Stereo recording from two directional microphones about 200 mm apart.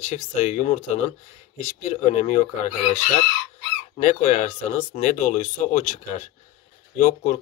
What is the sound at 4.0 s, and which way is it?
Speech, 35° left (ahead or behind).